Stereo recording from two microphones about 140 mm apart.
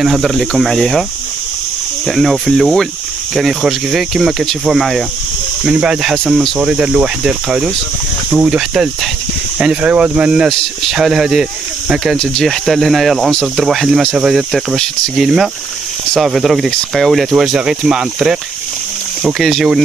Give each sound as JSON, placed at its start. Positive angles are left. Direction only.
{"t": 0.0, "sound": "speech", "side_deg": 0}
{"t": 2.0, "sound": "speech", "side_deg": 0}